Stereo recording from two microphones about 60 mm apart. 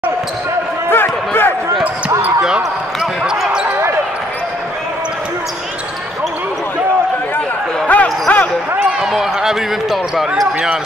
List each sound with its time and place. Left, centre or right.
0.8 s a sound: left
2.4 s basketball bounce: centre
7.8 s basketball bounce: left
9.0 s speech: centre